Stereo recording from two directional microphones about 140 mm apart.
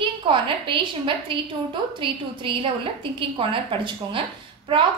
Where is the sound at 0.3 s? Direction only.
35° right (ahead or behind).